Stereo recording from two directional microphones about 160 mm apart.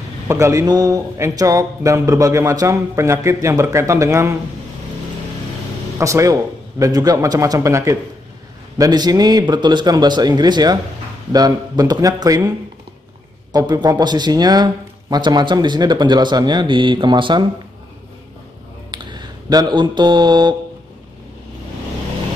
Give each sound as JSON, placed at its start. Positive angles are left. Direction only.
{"t": 0.3, "sound": "speech", "side_deg": -20}
{"t": 5.9, "sound": "speech", "side_deg": -20}
{"t": 18.9, "sound": "a sound", "side_deg": -30}